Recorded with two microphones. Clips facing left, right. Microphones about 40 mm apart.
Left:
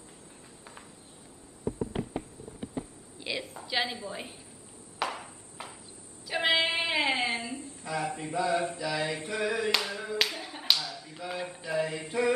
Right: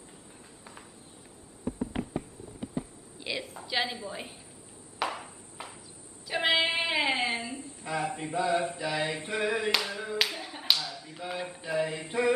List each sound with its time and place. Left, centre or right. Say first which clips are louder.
1.6 s a sound: left 1 dB; centre
2.6 s a woman's voice: right 2 dB; centre
4.9 s ping: right 1 dB; centre
6.2 s a woman's voice: even; centre
7.6 s a man's voice: right 1 dB; centre
8.7 s mantra: even; centre
9.7 s clapping: even; centre